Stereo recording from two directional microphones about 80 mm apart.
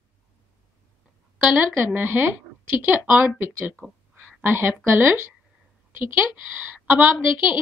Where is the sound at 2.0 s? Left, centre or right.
Right.